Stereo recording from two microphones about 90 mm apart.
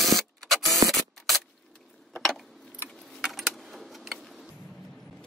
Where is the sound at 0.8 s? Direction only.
40° right (ahead or behind).